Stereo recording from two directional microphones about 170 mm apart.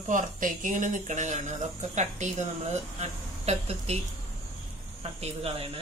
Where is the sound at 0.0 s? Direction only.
50° right (ahead or behind).